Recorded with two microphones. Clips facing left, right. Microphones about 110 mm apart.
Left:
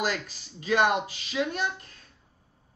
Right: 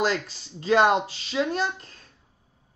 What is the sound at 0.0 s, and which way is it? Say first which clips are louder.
Speech: right 5 dB; 30° right (ahead or behind).